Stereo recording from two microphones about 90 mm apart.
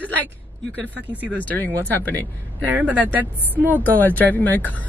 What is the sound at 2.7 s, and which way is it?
Speech, 20° right (ahead or behind).